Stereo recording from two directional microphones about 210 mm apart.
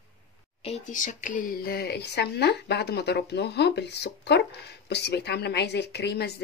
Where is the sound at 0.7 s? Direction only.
35° left (ahead or behind).